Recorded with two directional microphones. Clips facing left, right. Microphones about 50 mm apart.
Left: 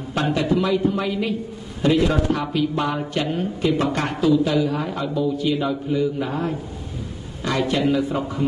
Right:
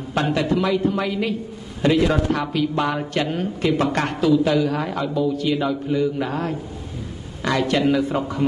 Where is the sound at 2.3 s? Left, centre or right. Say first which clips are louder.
Right 1 dB; right.